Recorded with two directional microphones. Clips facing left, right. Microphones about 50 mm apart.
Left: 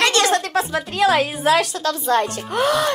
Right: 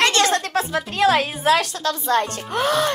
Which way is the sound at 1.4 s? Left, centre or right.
Left.